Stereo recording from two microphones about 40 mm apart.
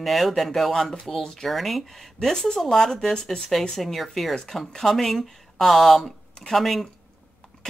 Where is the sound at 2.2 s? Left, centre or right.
Centre.